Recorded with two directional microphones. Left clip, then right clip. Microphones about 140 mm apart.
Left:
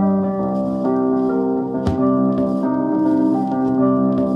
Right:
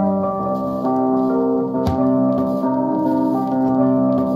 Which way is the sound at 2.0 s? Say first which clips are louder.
Left 1 dB; 10° right (ahead or behind).